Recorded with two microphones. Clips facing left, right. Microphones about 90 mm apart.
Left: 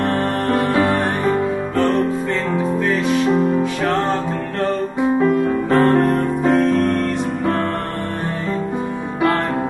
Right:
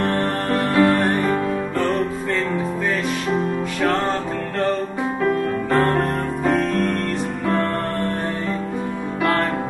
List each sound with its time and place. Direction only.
0.0 s music: 5° left (ahead or behind)
0.6 s music: 15° left (ahead or behind)